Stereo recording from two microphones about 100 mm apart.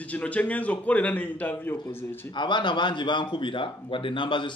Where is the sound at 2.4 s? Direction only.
50° left (ahead or behind).